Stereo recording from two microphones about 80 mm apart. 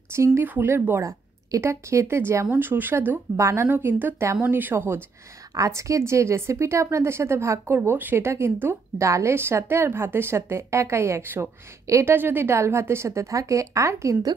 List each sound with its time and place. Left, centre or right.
0.1 s a woman's voice: right
3.3 s speech: right
3.6 s a woman's voice: right
5.5 s speech: right